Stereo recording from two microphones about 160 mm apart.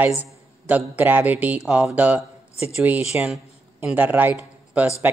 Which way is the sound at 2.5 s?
40° left (ahead or behind).